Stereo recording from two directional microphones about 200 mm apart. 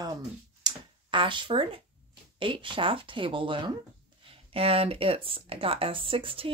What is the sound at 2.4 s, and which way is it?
Speech, 25° right (ahead or behind).